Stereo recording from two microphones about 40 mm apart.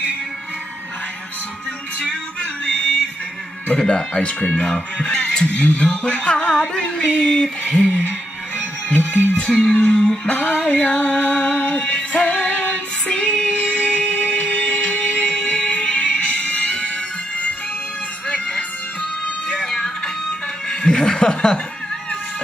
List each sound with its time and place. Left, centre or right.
3.7 s music: left
7.4 s a sound: centre
8.8 s music: left
9.5 s a sound: centre
9.8 s music: centre
12.5 s female singing: left
15.6 s music: left
18.3 s music: left
19.5 s music: centre
20.8 s chuckle: centre